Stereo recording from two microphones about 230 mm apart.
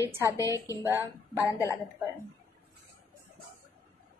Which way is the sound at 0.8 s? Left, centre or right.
Centre.